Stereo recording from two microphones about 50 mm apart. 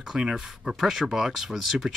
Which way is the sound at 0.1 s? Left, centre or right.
Centre.